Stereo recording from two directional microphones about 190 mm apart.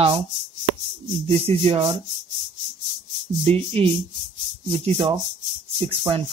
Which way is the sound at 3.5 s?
30° right (ahead or behind).